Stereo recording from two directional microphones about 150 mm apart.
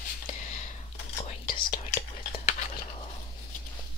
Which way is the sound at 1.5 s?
30° left (ahead or behind).